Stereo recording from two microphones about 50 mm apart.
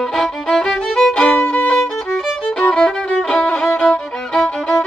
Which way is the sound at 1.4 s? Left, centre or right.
Left.